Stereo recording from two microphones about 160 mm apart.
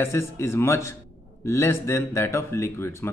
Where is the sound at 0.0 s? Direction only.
15° left (ahead or behind).